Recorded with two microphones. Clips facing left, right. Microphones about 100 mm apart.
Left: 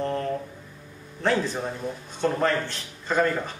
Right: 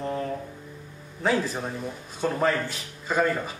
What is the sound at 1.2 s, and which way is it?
Speech, 5° right (ahead or behind).